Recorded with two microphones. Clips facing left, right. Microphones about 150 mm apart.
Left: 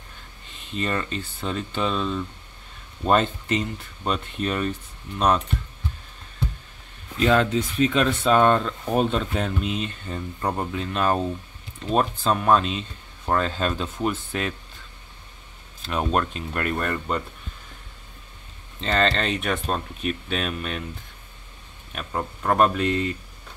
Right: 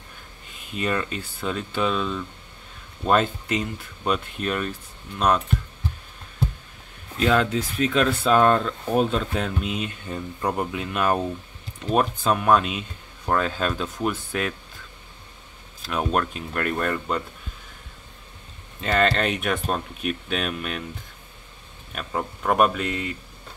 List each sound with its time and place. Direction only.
0.7 s speech: 5° right (ahead or behind)
7.2 s speech: centre (ahead or behind)
15.8 s speech: 5° right (ahead or behind)
18.8 s speech: 10° right (ahead or behind)
21.9 s speech: centre (ahead or behind)